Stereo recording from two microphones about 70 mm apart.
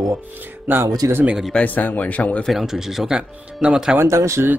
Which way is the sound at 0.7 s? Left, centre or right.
Right.